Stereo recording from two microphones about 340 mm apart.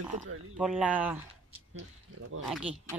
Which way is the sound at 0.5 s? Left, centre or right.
Centre.